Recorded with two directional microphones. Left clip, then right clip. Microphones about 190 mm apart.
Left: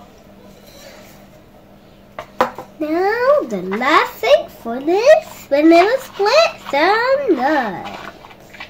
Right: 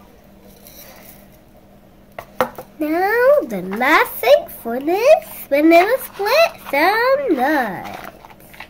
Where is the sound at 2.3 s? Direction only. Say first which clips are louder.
Left 2 dB; 35° right (ahead or behind).